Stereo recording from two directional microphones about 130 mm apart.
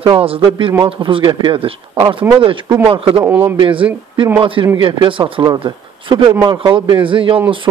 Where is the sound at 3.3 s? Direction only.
15° right (ahead or behind).